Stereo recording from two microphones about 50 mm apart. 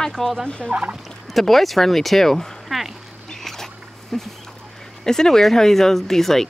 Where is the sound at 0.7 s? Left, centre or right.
Right.